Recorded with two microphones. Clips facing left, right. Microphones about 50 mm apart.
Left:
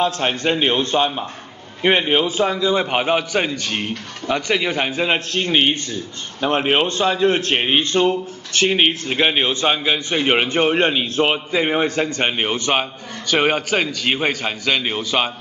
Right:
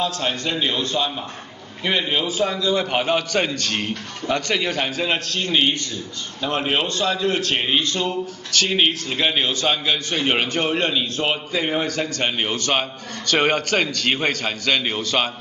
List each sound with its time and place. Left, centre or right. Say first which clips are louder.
0.0 s a man's voice: left 4 dB; left; by 15.2 s centre